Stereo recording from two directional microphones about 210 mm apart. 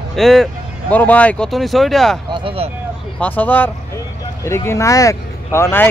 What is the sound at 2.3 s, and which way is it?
Speech, 25° right (ahead or behind).